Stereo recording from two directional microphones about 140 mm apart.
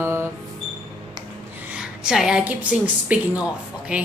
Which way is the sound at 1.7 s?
5° right (ahead or behind).